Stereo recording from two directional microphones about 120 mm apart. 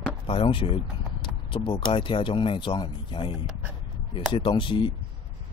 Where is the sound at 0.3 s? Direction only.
45° left (ahead or behind).